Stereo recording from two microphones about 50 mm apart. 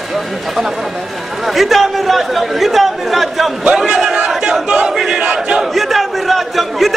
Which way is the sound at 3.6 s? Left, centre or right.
Centre.